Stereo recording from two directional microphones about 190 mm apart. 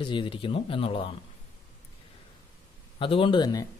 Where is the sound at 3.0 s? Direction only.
25° left (ahead or behind).